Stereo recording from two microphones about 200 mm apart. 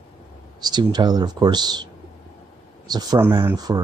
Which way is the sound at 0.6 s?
20° right (ahead or behind).